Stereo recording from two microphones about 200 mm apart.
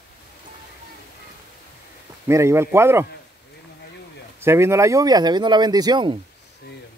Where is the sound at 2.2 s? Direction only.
15° right (ahead or behind).